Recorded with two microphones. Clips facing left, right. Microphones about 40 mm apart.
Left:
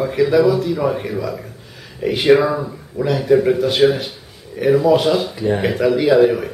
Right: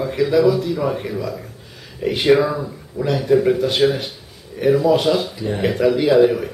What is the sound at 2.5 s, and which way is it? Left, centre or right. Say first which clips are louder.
Speech: left 3 dB; centre.